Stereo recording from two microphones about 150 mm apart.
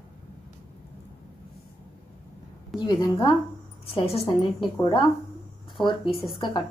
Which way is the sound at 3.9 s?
40° left (ahead or behind).